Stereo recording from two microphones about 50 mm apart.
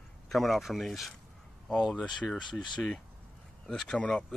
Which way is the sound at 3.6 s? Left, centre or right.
Centre.